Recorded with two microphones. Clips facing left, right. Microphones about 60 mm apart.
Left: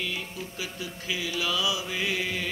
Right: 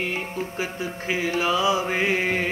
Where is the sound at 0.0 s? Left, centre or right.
Right.